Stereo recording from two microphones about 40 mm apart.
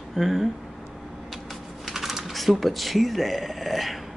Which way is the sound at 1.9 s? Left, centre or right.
Centre.